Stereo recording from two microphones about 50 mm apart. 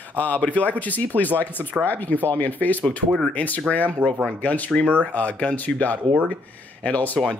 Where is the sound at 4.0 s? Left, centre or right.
Right.